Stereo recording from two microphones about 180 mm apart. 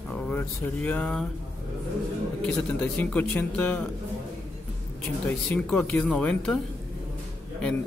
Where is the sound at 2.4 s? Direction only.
5° left (ahead or behind).